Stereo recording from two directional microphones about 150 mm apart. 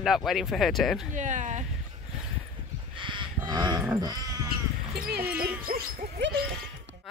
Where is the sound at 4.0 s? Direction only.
25° right (ahead or behind).